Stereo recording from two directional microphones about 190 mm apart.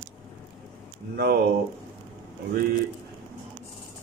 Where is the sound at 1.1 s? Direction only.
55° right (ahead or behind).